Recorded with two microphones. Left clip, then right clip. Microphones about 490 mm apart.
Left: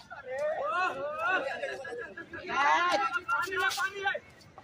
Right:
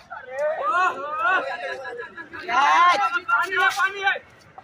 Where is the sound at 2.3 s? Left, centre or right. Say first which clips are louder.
Right 9 dB; centre.